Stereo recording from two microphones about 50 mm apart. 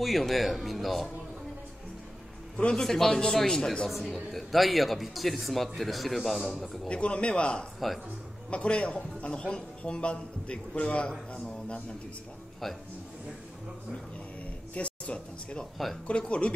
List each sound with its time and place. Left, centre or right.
0.0 s speech: centre
2.5 s a man's voice: centre
3.9 s speech: centre
6.9 s a man's voice: left
14.7 s a man's voice: left